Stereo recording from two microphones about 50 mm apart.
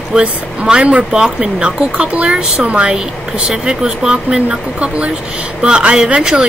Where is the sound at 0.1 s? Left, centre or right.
Centre.